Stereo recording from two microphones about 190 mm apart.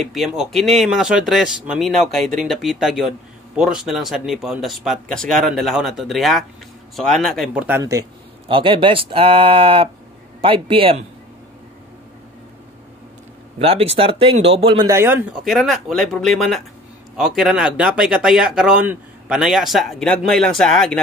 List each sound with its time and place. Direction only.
0.1 s speech: centre (ahead or behind)
8.5 s speech: 25° right (ahead or behind)
13.6 s speech: 30° right (ahead or behind)
15.0 s speech: 10° right (ahead or behind)
15.4 s speech: centre (ahead or behind)